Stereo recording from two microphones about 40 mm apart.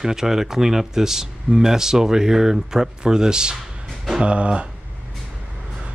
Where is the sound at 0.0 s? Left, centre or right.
Centre; by 4.6 s right.